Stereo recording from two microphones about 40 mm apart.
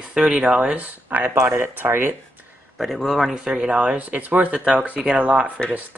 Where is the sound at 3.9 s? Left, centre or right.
Right.